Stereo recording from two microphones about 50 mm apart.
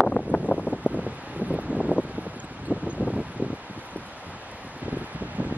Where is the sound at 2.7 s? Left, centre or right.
Right.